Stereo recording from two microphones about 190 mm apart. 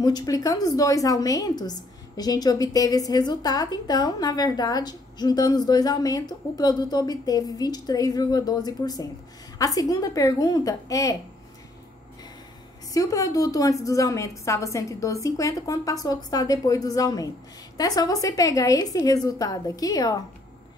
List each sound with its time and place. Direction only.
0.0 s a woman's voice: 20° left (ahead or behind)
12.9 s a woman's voice: 20° left (ahead or behind)